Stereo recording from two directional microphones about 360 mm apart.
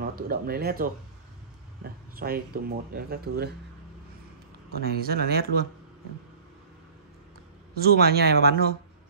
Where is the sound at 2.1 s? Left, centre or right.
Right.